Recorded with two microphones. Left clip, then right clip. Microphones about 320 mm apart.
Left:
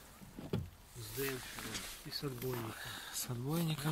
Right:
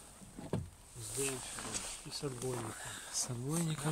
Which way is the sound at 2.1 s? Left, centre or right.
Centre.